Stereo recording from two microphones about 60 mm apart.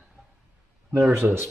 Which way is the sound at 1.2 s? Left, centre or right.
Right.